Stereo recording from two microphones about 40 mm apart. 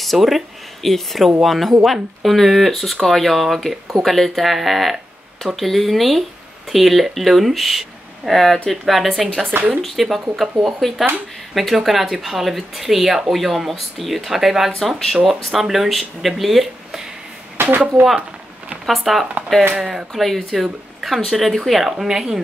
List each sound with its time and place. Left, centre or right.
0.0 s speech: centre
8.3 s speech: centre
9.5 s speech: right
10.0 s speech: centre
14.8 s speech: centre
15.2 s speech: centre
17.6 s speech: right
18.9 s speech: centre